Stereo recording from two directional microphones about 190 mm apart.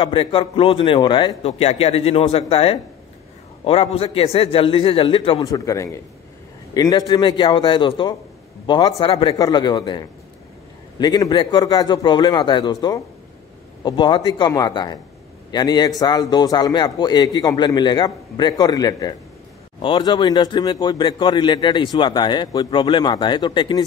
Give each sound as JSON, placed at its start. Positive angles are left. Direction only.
{"t": 0.0, "sound": "a man's voice", "side_deg": 25}